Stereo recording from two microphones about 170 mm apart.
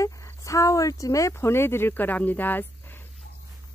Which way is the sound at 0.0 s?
20° left (ahead or behind).